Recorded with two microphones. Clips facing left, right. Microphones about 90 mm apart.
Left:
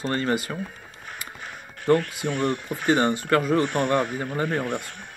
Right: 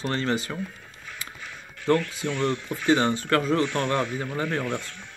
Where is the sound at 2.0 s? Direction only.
50° left (ahead or behind).